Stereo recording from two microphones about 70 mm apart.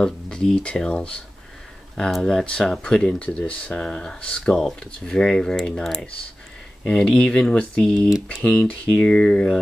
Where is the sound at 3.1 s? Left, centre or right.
Centre.